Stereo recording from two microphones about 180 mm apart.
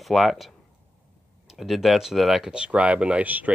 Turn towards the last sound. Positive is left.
turn(degrees=-10)  # may be behind; listen again after turning